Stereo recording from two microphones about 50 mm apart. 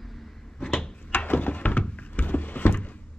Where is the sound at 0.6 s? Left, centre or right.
Centre.